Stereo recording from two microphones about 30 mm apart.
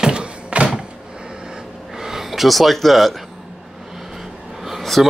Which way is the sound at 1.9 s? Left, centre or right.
Centre.